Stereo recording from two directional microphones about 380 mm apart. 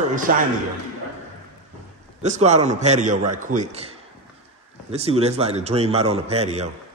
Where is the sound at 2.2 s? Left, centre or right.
Centre.